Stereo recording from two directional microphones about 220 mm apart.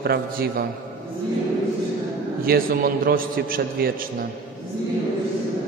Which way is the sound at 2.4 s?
45° right (ahead or behind).